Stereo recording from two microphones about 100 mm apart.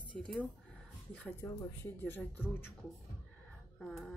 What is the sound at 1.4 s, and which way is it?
Speech, 25° left (ahead or behind).